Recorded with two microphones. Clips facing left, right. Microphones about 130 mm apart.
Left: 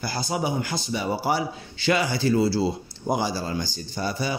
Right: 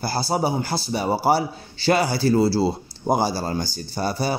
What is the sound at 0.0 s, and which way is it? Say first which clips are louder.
Speech: right 4 dB; 35° right (ahead or behind).